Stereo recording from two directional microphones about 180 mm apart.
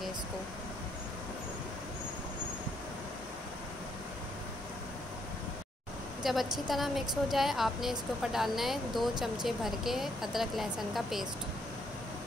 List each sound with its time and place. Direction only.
6.2 s speech: centre (ahead or behind)